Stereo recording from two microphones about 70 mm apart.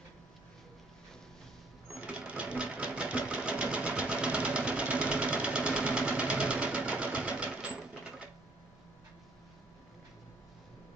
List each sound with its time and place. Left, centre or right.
2.0 s sewing machine: centre